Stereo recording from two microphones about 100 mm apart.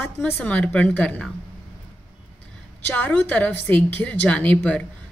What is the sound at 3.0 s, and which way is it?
A woman's voice, 15° left (ahead or behind).